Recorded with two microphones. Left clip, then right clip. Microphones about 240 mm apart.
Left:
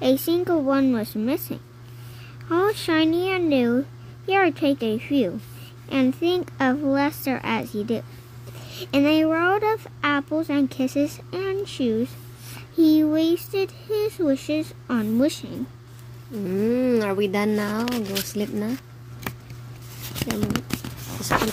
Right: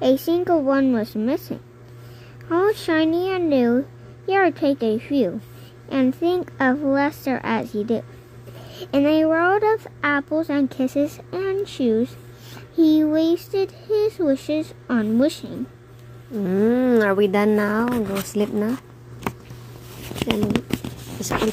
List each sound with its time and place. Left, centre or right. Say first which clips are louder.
0.0 s speech: right 2 dB; centre
16.4 s speech: right 3 dB; centre
20.2 s a sound: right 5 dB; centre
21.2 s speech: left 3 dB; centre